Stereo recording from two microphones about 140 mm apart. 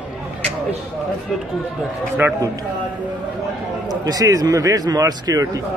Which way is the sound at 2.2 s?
15° right (ahead or behind).